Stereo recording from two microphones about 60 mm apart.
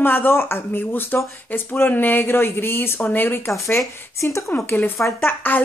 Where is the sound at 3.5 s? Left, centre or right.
Left.